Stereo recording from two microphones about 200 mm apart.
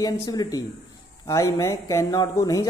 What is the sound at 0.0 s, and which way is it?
Speech, 20° left (ahead or behind).